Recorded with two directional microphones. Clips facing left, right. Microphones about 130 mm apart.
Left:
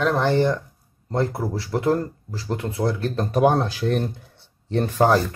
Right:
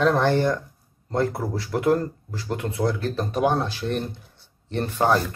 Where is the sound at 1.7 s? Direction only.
30° left (ahead or behind).